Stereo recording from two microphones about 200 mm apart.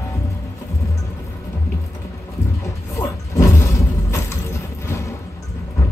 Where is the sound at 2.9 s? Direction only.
15° left (ahead or behind).